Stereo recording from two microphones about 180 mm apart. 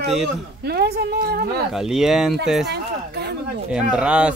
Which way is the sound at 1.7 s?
5° right (ahead or behind).